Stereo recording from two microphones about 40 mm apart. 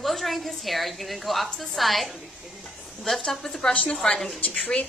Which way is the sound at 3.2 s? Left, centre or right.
Centre.